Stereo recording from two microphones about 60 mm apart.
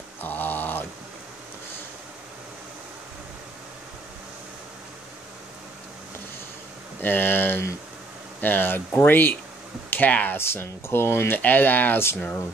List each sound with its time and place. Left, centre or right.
0.2 s a sound: left
7.0 s speech: left
10.3 s speech: left
11.3 s speech: left